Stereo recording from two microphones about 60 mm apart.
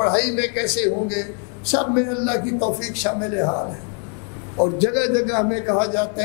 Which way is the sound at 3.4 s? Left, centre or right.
Left.